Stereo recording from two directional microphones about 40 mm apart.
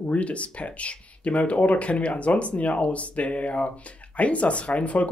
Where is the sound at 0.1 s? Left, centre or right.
Left.